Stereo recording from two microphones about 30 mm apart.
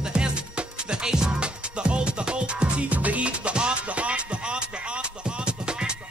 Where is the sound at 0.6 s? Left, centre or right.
Right.